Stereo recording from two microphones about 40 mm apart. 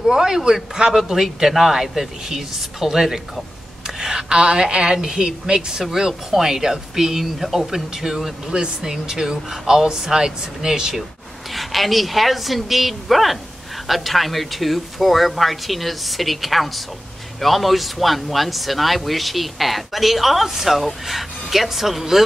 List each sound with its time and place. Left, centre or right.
0.1 s speech: centre
4.3 s a woman's voice: right
11.5 s speech: centre